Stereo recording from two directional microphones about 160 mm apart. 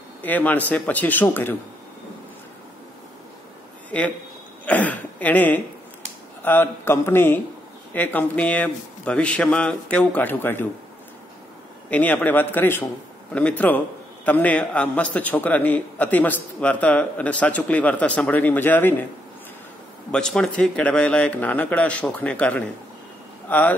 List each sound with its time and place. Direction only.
0.2 s a man's voice: 10° left (ahead or behind)
3.9 s a man's voice: 10° left (ahead or behind)
11.9 s a man's voice: 10° left (ahead or behind)
20.1 s a man's voice: 5° left (ahead or behind)